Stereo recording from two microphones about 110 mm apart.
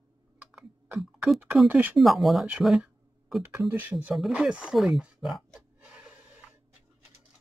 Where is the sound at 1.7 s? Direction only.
15° right (ahead or behind).